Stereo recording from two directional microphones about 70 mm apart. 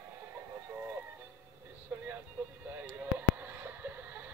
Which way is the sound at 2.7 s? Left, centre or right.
Right.